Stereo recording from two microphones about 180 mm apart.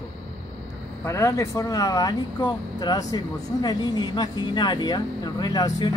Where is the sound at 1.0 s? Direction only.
15° left (ahead or behind).